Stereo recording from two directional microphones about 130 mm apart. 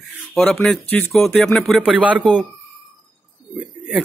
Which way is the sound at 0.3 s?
5° left (ahead or behind).